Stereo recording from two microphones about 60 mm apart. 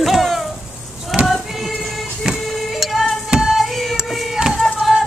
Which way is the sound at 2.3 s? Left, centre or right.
Centre.